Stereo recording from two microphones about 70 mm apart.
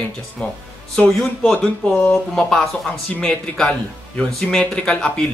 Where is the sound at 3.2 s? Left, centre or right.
Centre.